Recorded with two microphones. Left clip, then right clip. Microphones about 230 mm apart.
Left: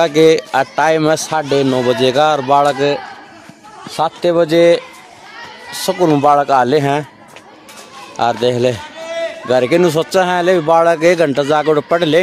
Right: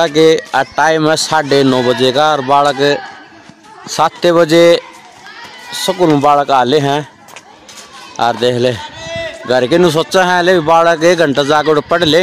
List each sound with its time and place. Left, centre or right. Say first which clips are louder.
0.0 s a man's voice: right 1 dB; centre
8.2 s speech: right 2 dB; centre